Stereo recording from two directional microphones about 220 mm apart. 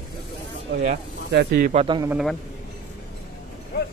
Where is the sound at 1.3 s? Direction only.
50° right (ahead or behind).